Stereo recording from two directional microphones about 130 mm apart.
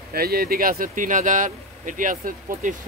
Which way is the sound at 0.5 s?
90° right.